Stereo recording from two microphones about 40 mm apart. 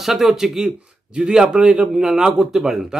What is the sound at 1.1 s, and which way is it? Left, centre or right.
A man's voice, right.